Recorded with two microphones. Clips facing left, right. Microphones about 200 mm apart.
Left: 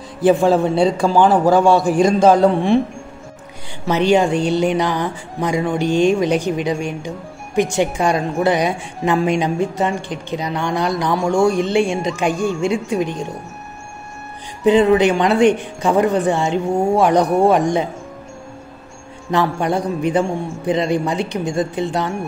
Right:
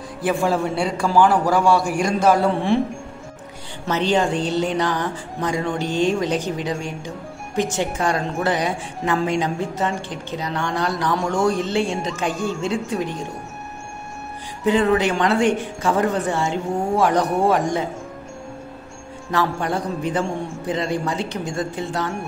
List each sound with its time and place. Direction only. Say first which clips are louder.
0.2 s a man's voice: left 7 dB; 20° left (ahead or behind)
3.8 s speech: left 5 dB; 10° left (ahead or behind)
14.6 s speech: left 5 dB; 15° left (ahead or behind)
19.3 s speech: left 4 dB; 15° left (ahead or behind)